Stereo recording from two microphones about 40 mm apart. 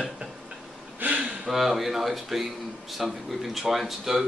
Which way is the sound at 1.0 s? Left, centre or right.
Right.